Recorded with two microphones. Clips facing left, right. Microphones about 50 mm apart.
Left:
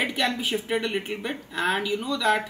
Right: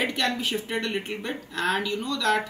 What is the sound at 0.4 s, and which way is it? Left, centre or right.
Speech, centre.